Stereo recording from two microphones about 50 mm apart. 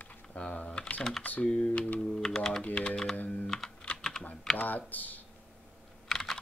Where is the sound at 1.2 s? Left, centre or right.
Left.